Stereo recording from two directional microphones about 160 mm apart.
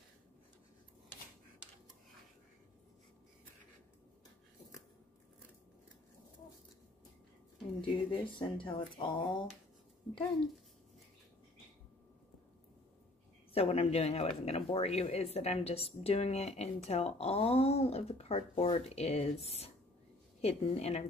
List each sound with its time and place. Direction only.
7.8 s speech: 30° left (ahead or behind)
13.5 s speech: 35° left (ahead or behind)